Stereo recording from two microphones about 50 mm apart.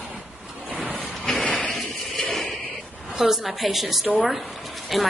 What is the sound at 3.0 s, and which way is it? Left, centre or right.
A woman's voice, centre.